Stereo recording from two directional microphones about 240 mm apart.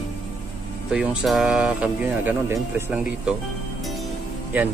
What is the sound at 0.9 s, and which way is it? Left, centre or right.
Speech, centre.